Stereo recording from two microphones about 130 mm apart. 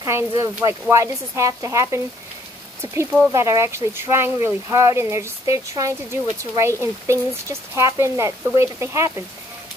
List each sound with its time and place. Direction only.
0.0 s speech: 20° right (ahead or behind)